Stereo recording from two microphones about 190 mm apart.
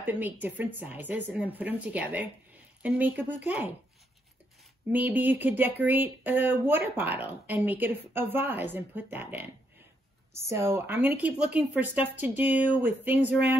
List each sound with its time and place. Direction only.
0.0 s speech: 10° right (ahead or behind)
4.9 s speech: 10° right (ahead or behind)